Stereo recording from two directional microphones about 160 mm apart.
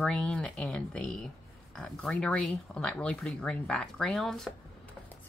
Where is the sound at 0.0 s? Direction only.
5° left (ahead or behind).